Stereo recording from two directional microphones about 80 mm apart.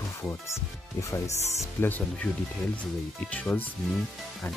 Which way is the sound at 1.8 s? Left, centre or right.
Left.